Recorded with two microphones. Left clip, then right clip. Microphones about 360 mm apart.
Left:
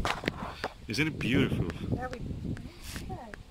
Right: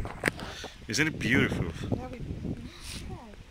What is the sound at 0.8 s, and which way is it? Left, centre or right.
Speech, centre.